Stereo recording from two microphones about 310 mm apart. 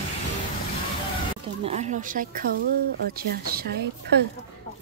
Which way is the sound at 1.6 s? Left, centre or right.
Right.